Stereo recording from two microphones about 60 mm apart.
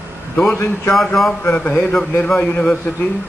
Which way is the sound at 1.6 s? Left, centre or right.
Left.